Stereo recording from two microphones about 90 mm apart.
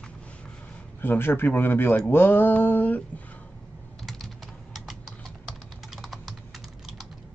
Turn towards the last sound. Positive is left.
turn(degrees=0)  # may be behind; listen again after turning